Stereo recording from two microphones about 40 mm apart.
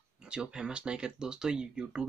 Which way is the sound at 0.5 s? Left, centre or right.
Centre.